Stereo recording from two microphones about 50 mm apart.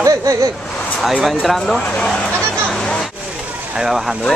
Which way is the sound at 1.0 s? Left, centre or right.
Centre.